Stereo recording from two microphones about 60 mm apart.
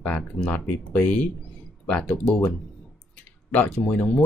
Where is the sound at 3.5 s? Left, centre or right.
Left.